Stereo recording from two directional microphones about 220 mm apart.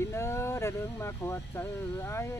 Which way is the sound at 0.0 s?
10° left (ahead or behind).